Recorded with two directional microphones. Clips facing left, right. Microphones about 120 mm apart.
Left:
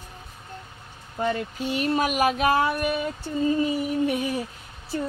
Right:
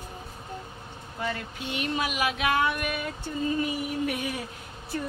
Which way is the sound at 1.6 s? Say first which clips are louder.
Left 6 dB; 40° left (ahead or behind).